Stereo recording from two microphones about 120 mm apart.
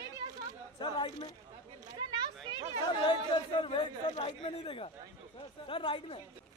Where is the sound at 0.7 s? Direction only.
40° left (ahead or behind).